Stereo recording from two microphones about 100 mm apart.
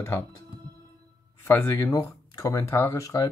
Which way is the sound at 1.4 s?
25° left (ahead or behind).